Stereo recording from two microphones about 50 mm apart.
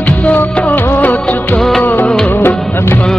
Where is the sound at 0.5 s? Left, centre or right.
Left.